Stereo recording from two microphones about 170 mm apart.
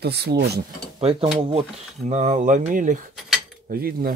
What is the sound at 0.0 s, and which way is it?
Speech, 75° right (ahead or behind).